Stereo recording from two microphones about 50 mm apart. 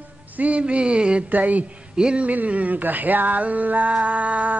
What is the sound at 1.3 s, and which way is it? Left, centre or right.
Female singing, right.